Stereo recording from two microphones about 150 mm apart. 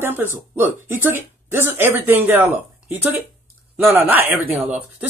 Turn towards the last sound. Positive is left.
turn(degrees=-10)  # may be behind; listen again after turning